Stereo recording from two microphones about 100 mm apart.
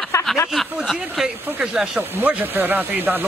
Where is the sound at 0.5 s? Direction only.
Centre (ahead or behind).